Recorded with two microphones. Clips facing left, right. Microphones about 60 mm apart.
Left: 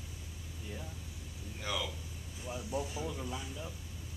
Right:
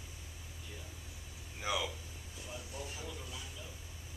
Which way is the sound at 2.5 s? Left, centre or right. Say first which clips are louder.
Left 8 dB; centre.